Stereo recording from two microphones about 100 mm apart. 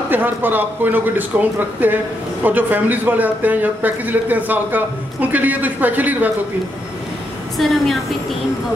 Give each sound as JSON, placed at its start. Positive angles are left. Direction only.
{"t": 0.1, "sound": "a man's voice", "side_deg": -20}
{"t": 7.5, "sound": "a woman's voice", "side_deg": 0}